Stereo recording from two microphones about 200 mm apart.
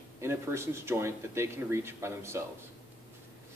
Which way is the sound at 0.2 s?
15° right (ahead or behind).